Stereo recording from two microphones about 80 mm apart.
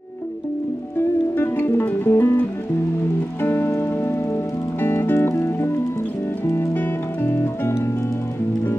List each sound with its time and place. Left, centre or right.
1.3 s music: left
3.4 s music: left